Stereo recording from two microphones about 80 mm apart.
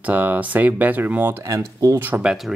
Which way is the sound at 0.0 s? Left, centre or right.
Right.